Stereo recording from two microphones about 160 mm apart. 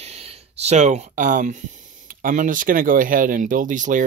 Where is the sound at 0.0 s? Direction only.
40° right (ahead or behind).